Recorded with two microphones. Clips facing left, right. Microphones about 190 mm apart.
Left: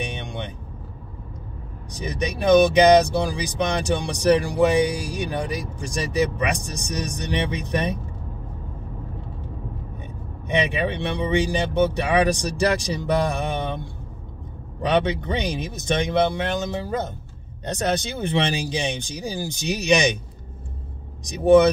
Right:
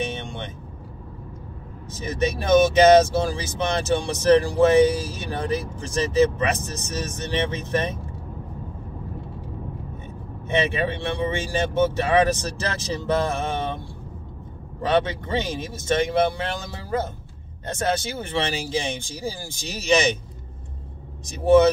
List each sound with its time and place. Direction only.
0.0 s vehicle: 15° left (ahead or behind)
1.9 s speech: 15° left (ahead or behind)
10.5 s speech: 15° left (ahead or behind)
14.8 s speech: 15° left (ahead or behind)
21.3 s speech: 15° left (ahead or behind)